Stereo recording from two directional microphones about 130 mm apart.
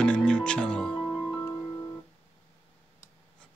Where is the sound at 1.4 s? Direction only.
20° left (ahead or behind).